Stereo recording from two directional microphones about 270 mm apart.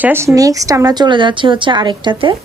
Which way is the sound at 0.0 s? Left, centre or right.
Centre.